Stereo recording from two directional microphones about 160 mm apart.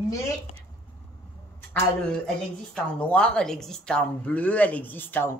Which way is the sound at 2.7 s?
5° left (ahead or behind).